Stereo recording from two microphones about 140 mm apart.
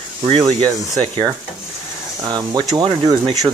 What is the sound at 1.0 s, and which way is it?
Speech, 40° right (ahead or behind).